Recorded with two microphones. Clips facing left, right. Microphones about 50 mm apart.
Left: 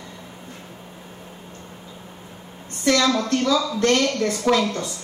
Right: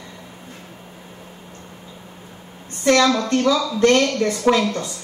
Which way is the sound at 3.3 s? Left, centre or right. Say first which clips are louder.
Right 2 dB; centre.